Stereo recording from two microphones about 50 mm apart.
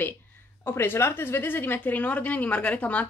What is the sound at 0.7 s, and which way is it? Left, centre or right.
A woman's voice, left.